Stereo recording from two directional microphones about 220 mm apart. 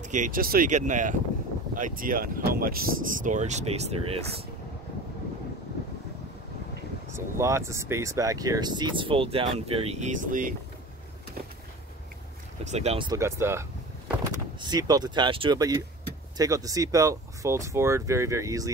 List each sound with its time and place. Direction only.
0.0 s speech: 35° right (ahead or behind)
7.1 s speech: 10° right (ahead or behind); by 10.5 s 35° right (ahead or behind)
12.6 s speech: 30° right (ahead or behind)